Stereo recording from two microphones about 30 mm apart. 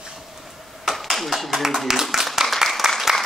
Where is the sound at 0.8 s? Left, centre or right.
Centre.